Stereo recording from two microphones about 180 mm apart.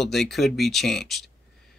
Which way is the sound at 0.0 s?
Centre (ahead or behind).